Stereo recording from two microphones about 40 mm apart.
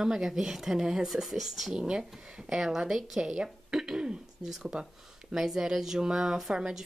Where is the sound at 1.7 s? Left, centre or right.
Right.